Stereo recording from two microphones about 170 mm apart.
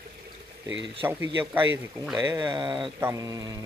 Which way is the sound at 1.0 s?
10° right (ahead or behind).